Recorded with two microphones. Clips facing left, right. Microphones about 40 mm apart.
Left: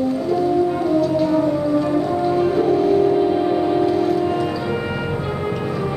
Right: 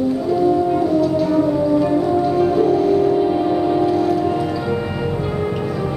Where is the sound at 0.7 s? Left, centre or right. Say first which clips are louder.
Right 2 dB; centre.